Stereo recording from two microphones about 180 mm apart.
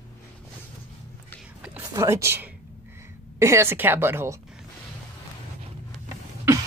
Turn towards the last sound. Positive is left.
turn(degrees=-20)  # may be behind; listen again after turning